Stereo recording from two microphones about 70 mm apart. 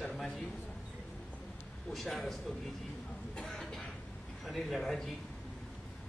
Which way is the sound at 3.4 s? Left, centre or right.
Centre.